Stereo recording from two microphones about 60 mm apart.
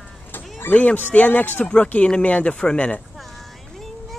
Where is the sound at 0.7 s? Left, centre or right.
Left.